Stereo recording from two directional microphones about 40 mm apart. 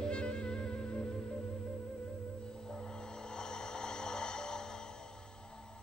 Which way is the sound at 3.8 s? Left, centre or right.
Centre.